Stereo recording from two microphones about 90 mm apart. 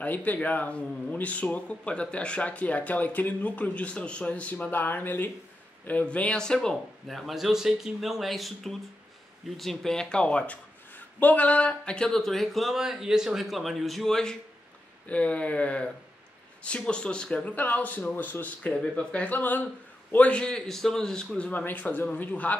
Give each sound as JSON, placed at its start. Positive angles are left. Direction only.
{"t": 0.0, "sound": "speech", "side_deg": 20}
{"t": 15.0, "sound": "speech", "side_deg": 15}
{"t": 21.5, "sound": "speech", "side_deg": 15}